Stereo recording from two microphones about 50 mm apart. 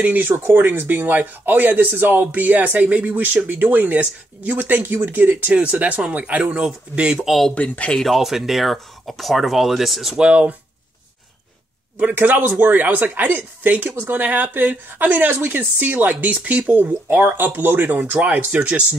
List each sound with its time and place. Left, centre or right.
0.5 s speech: right
6.6 s speech: centre
7.5 s speech: left
7.9 s speech: centre
8.2 s speech: centre
10.1 s speech: right
12.0 s speech: right
16.1 s speech: right